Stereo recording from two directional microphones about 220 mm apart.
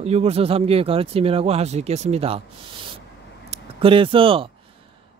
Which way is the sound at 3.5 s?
25° right (ahead or behind).